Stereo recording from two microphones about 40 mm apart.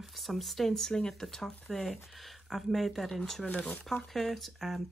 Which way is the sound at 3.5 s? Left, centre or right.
Left.